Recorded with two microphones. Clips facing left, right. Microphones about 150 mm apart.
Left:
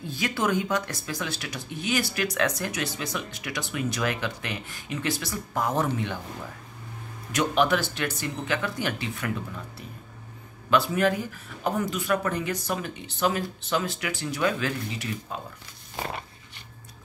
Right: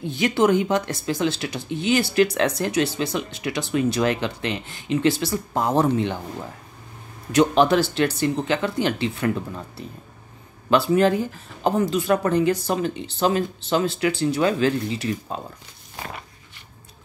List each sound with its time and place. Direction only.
0.0 s speech: 25° right (ahead or behind)
7.3 s speech: 30° right (ahead or behind)
10.7 s speech: 30° right (ahead or behind)